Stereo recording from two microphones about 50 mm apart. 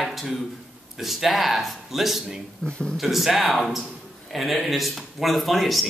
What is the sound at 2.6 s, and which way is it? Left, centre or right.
Speech, centre.